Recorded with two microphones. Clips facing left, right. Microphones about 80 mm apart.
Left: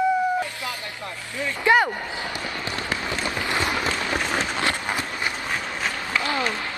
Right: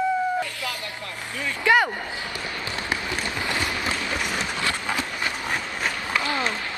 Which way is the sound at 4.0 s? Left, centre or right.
Left.